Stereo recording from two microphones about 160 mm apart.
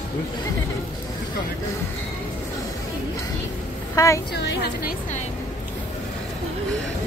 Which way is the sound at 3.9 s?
20° left (ahead or behind).